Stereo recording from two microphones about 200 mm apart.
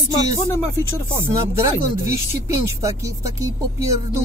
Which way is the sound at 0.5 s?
15° left (ahead or behind).